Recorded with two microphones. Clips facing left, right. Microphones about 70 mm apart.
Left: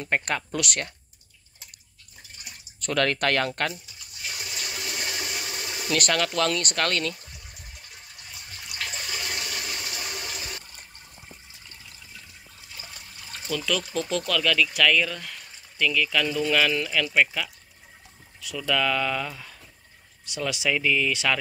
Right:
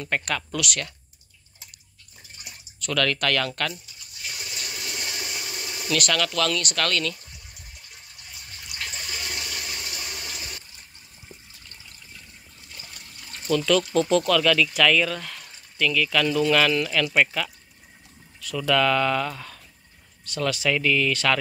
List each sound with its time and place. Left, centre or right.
0.0 s speech: left
2.8 s speech: left
4.7 s water: centre
5.2 s a sound: centre
5.9 s speech: left
8.8 s toilet flush: centre
12.7 s water: centre
13.6 s speech: centre